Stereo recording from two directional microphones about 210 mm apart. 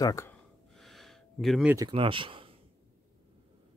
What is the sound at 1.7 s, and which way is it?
Speech, 20° right (ahead or behind).